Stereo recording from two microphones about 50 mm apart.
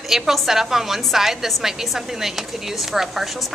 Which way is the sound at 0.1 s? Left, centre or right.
Centre.